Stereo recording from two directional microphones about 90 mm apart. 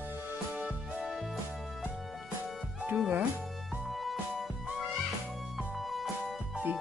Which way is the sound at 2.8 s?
15° right (ahead or behind).